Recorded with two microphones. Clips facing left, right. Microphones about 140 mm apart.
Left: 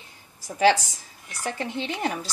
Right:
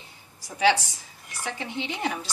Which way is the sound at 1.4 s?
45° left (ahead or behind).